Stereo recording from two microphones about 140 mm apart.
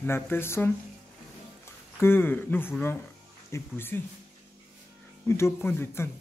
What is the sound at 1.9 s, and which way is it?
Speech, 15° left (ahead or behind).